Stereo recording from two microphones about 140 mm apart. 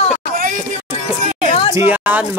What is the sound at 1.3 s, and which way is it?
Music, 65° right (ahead or behind).